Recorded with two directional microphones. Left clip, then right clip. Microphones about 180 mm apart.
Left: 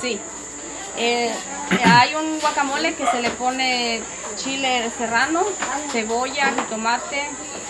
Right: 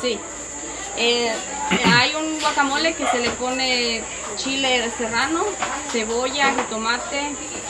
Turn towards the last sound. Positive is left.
turn(degrees=25)  # may be behind; listen again after turning